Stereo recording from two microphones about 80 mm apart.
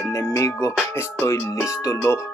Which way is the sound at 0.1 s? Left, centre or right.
Left.